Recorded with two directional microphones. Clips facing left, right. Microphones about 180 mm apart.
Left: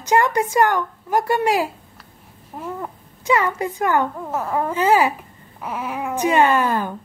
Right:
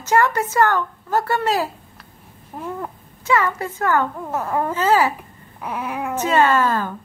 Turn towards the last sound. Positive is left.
turn(degrees=15)  # may be behind; listen again after turning